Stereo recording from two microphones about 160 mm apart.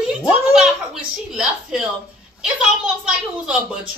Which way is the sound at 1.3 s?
5° right (ahead or behind).